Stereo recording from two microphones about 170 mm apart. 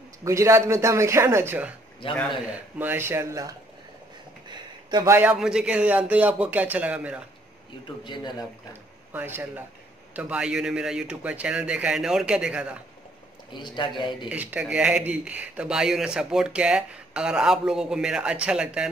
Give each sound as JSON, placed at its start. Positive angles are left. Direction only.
{"t": 0.2, "sound": "a man's voice", "side_deg": -15}
{"t": 2.8, "sound": "a man's voice", "side_deg": -10}
{"t": 4.5, "sound": "a sound", "side_deg": -25}
{"t": 5.1, "sound": "a man's voice", "side_deg": -10}
{"t": 8.0, "sound": "speech", "side_deg": 25}
{"t": 9.1, "sound": "a man's voice", "side_deg": -10}
{"t": 13.5, "sound": "speech", "side_deg": 25}
{"t": 14.3, "sound": "speech", "side_deg": -10}